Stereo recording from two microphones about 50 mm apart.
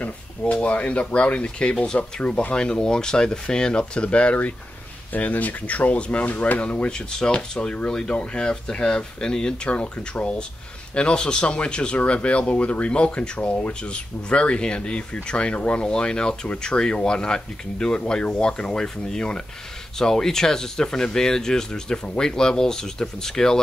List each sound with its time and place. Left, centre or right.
0.0 s speech: left
11.0 s speech: centre